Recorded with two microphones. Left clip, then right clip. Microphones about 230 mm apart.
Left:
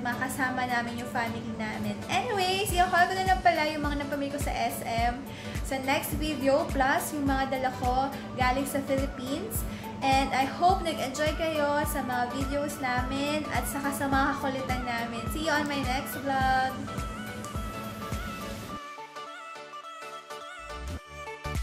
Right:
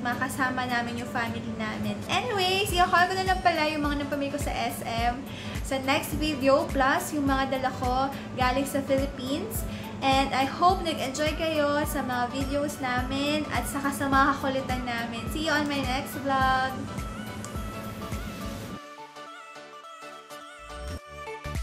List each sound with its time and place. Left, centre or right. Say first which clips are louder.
0.0 s a woman's voice: right 2 dB; centre